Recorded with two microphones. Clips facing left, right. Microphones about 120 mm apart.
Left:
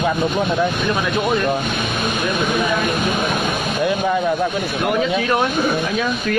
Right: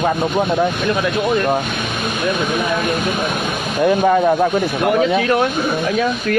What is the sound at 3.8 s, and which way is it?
Speech, 55° right (ahead or behind).